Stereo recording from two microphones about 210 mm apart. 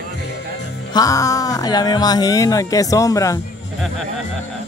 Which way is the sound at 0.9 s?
15° left (ahead or behind).